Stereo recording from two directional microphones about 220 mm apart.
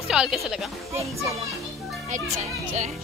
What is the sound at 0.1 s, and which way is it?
Speech, 5° right (ahead or behind).